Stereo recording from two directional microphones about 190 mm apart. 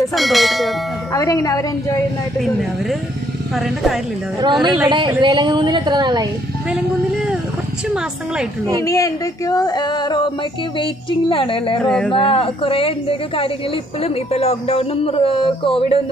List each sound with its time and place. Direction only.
0.1 s speech: centre (ahead or behind)
1.1 s speech: 15° left (ahead or behind)
3.5 s speech: centre (ahead or behind)
4.4 s a woman's voice: 25° right (ahead or behind)
8.8 s speech: 15° left (ahead or behind)
11.8 s speech: 5° left (ahead or behind)
12.1 s speech: 30° left (ahead or behind)
14.0 s speech: 35° left (ahead or behind)